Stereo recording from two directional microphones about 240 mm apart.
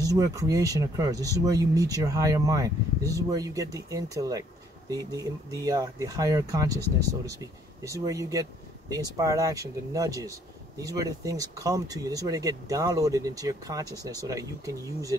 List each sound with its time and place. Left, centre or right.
0.0 s speech: centre
7.8 s speech: centre